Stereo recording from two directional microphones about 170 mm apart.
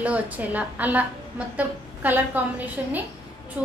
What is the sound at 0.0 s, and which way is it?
A woman's voice, 10° right (ahead or behind).